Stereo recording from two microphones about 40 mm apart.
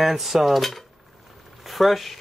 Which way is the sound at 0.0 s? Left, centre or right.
Centre.